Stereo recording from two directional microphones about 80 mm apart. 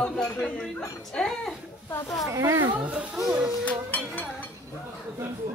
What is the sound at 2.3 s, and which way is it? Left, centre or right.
Speech, right.